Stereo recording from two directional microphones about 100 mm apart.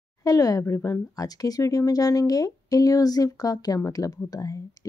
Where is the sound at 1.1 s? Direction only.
40° left (ahead or behind).